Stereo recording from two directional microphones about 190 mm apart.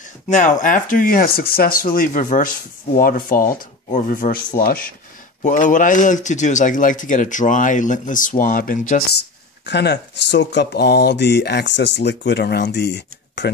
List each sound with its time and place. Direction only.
0.3 s speech: 40° left (ahead or behind)
9.7 s speech: 65° left (ahead or behind)